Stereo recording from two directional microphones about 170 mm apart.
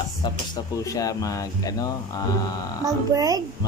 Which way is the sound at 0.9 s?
20° left (ahead or behind).